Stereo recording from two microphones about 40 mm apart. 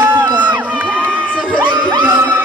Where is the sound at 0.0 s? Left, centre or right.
Right.